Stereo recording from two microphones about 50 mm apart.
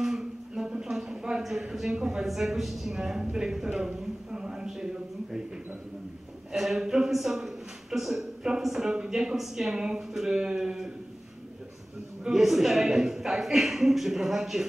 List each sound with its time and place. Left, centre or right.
0.0 s a sound: centre
1.4 s a man's voice: centre
6.5 s speech: centre
12.3 s speech: centre